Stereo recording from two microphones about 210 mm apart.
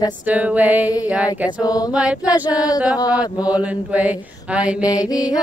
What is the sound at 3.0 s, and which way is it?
Speech, 20° left (ahead or behind).